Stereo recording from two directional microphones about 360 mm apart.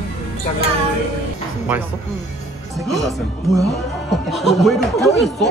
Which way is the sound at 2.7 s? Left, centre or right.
Centre.